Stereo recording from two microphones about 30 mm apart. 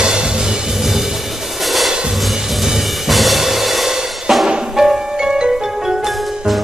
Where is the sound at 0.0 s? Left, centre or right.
Right.